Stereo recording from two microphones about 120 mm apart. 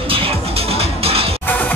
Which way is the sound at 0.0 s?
50° right (ahead or behind).